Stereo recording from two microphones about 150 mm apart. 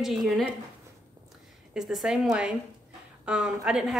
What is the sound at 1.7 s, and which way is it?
A woman's voice, 5° right (ahead or behind).